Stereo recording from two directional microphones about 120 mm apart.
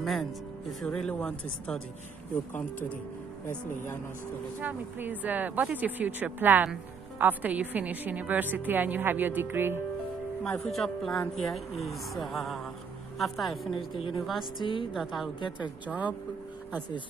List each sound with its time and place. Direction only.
0.0 s speech: centre (ahead or behind)
3.4 s speech: 20° left (ahead or behind)
4.6 s speech: 15° right (ahead or behind)
10.4 s speech: 5° left (ahead or behind)
13.7 s a woman's voice: 45° left (ahead or behind)
15.0 s speech: centre (ahead or behind)
15.9 s speech: 10° right (ahead or behind)